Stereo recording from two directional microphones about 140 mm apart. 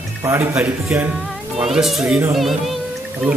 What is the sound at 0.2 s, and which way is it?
Speech, 20° right (ahead or behind).